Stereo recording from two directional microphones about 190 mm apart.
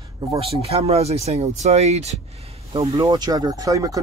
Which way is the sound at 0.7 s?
35° right (ahead or behind).